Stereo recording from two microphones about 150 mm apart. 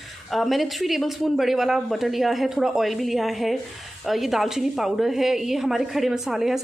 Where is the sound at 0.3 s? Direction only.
Centre (ahead or behind).